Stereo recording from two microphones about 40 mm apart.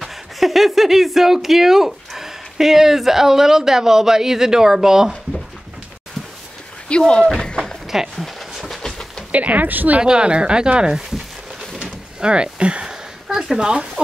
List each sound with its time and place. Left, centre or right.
0.0 s speech: centre
6.9 s speech: left
7.4 s a sound: centre
7.8 s speech: centre
8.4 s train: centre
9.3 s speech: right
10.0 s speech: right
11.8 s a sound: right
13.5 s speech: right